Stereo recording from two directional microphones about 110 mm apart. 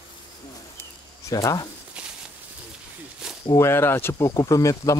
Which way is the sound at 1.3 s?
35° left (ahead or behind).